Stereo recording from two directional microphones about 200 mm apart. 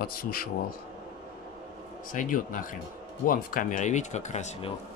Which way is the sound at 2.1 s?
40° left (ahead or behind).